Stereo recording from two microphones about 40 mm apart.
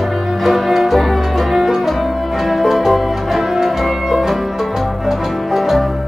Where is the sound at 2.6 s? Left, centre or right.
Centre.